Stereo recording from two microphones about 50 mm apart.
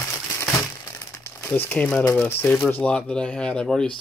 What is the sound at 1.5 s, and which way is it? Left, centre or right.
Speech, left.